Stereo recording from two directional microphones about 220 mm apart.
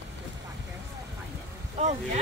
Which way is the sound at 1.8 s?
30° right (ahead or behind).